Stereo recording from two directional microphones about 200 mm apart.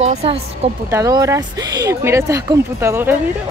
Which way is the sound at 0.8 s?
15° right (ahead or behind).